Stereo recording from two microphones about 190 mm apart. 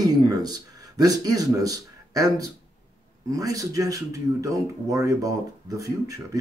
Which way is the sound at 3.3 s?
20° right (ahead or behind).